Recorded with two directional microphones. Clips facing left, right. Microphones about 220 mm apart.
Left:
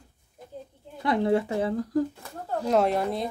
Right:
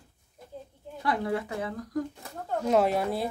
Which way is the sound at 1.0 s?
25° left (ahead or behind).